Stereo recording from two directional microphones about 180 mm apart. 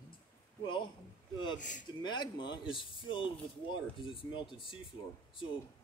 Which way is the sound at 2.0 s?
25° left (ahead or behind).